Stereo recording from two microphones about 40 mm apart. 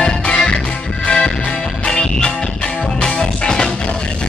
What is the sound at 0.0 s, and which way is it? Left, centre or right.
Music, left.